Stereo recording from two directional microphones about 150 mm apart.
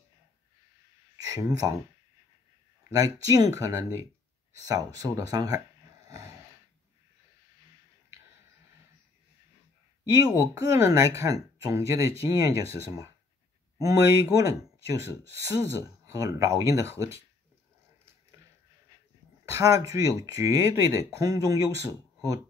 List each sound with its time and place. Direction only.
1.1 s speech: 25° right (ahead or behind)
3.0 s speech: 25° right (ahead or behind)
10.1 s speech: 25° right (ahead or behind)
19.4 s speech: 20° right (ahead or behind)